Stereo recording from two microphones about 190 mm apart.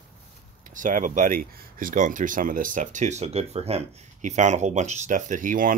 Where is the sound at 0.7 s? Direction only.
45° right (ahead or behind).